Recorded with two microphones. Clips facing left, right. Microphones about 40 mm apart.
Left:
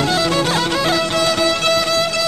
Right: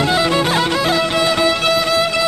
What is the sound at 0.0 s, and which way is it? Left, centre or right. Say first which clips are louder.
Music: right 2 dB; centre.